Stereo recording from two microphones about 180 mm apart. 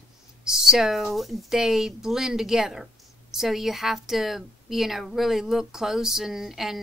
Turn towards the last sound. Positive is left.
turn(degrees=0)  # may be behind; listen again after turning